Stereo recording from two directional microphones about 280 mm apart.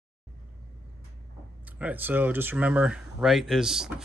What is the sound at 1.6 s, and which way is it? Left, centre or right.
Speech, centre.